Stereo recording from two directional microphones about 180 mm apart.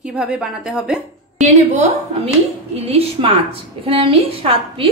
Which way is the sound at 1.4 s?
35° right (ahead or behind).